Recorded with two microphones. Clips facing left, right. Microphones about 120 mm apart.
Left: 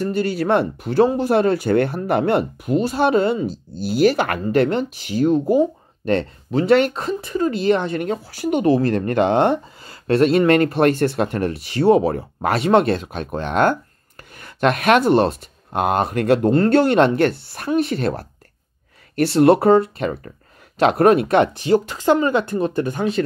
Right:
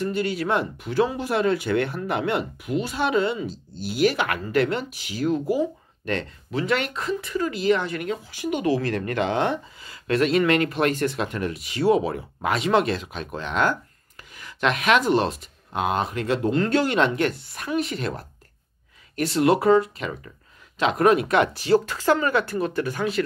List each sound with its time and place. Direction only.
0.0 s speech: 35° left (ahead or behind)
3.4 s speech: centre (ahead or behind)
3.9 s speech: 35° left (ahead or behind)
8.1 s speech: 40° left (ahead or behind)
10.0 s speech: 35° left (ahead or behind)
12.5 s speech: 55° left (ahead or behind)
16.7 s speech: 55° left (ahead or behind)
17.6 s speech: 30° left (ahead or behind)
19.7 s speech: 45° left (ahead or behind)
20.9 s speech: 35° left (ahead or behind)